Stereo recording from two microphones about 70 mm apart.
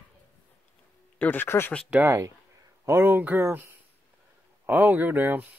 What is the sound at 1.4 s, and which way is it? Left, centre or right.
Speech, left.